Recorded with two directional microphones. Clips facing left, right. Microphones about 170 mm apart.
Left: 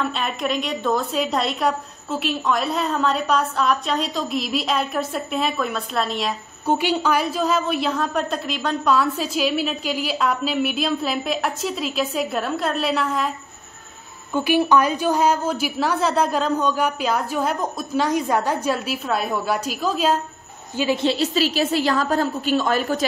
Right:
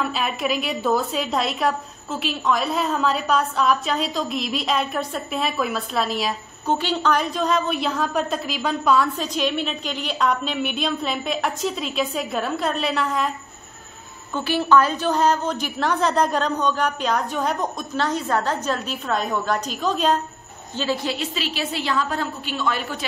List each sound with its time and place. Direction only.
0.0 s a woman's voice: 5° right (ahead or behind)
6.6 s a woman's voice: 10° left (ahead or behind)
14.3 s a woman's voice: 15° left (ahead or behind)
21.0 s a woman's voice: 30° left (ahead or behind)
21.4 s a woman's voice: 40° left (ahead or behind)